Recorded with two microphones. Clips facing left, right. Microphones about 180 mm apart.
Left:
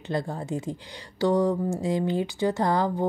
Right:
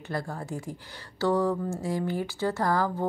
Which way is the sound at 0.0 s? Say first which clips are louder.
Left 4 dB; 20° left (ahead or behind).